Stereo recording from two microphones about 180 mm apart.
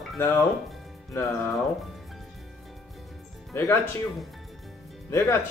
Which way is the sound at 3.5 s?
15° left (ahead or behind).